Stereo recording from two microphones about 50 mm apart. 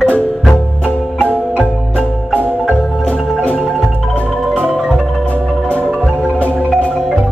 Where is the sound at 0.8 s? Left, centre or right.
Left.